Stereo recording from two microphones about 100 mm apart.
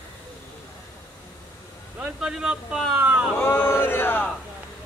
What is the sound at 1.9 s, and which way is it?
A man's voice, 5° right (ahead or behind).